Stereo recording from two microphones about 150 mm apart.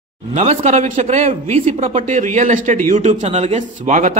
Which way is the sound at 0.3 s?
50° right (ahead or behind).